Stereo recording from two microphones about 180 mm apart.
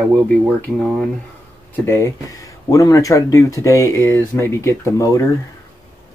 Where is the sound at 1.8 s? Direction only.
15° left (ahead or behind).